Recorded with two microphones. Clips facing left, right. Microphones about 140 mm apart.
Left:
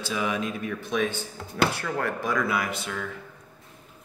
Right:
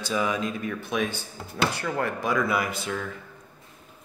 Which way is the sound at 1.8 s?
30° right (ahead or behind).